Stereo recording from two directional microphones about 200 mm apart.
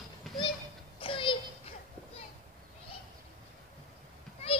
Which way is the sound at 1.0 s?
25° left (ahead or behind).